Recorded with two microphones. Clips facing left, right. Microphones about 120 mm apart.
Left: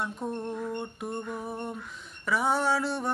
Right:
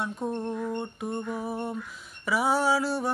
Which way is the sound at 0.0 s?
Centre (ahead or behind).